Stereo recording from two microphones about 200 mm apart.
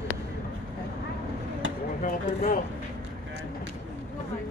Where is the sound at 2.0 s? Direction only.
40° left (ahead or behind).